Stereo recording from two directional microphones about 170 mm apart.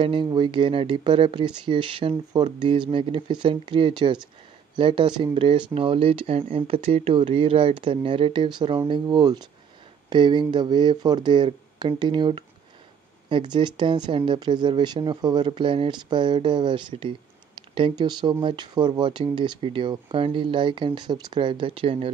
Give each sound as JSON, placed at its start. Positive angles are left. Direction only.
{"t": 0.0, "sound": "speech", "side_deg": -30}